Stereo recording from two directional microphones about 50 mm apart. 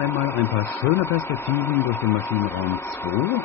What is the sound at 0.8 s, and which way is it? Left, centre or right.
Speech, left.